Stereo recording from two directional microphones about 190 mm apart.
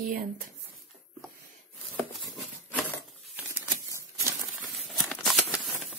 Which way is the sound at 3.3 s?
10° right (ahead or behind).